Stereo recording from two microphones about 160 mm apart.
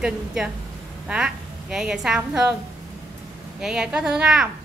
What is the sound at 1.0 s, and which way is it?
A woman's voice, 5° right (ahead or behind).